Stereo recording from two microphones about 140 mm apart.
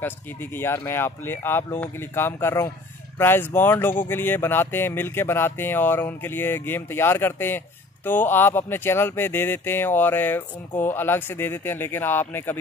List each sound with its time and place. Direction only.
0.0 s speech: 15° left (ahead or behind)